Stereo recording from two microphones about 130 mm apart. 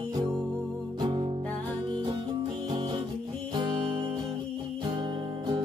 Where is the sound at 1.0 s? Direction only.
40° right (ahead or behind).